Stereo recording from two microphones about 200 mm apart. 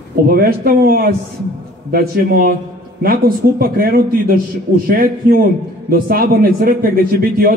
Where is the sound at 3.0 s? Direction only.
50° right (ahead or behind).